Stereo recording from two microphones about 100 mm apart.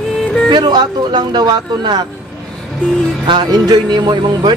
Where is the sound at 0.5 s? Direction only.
45° right (ahead or behind).